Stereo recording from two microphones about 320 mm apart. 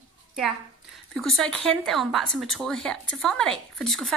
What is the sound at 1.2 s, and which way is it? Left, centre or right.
A woman's voice, centre.